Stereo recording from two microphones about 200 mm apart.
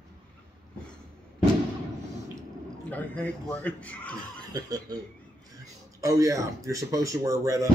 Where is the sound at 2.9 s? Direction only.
5° left (ahead or behind).